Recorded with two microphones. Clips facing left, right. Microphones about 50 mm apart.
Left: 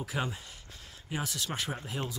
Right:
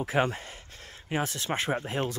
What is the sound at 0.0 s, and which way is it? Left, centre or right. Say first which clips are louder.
Speech: right 8 dB; right.